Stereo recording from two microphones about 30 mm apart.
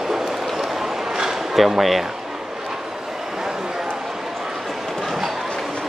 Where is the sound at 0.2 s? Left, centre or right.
Centre.